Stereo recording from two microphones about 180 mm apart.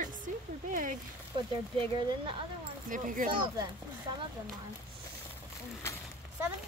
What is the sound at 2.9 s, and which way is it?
Speech, 45° right (ahead or behind).